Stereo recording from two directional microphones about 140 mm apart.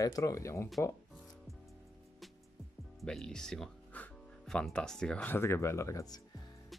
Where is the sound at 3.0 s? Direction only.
5° left (ahead or behind); by 6.2 s 25° left (ahead or behind).